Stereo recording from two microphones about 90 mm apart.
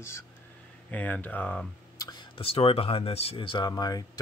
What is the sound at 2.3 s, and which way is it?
Speech, 90° left.